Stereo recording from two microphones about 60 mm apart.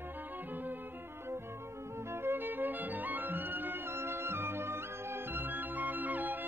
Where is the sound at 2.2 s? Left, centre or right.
Right.